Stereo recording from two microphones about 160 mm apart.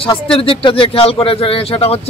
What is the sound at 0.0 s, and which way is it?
Speech, 35° left (ahead or behind).